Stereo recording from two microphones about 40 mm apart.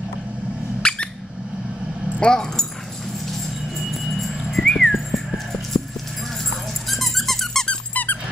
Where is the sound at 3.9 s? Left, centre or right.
Centre.